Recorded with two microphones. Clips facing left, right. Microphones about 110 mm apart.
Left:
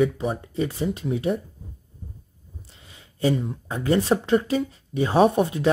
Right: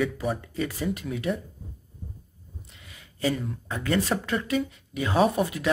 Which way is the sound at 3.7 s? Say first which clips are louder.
Left 5 dB; 30° left (ahead or behind).